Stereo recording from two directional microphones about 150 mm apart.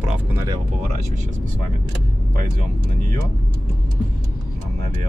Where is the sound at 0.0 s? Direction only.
10° right (ahead or behind).